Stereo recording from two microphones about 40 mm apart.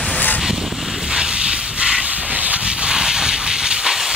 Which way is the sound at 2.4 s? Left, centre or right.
Right.